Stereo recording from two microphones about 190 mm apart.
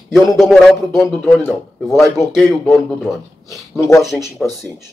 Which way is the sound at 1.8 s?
15° left (ahead or behind).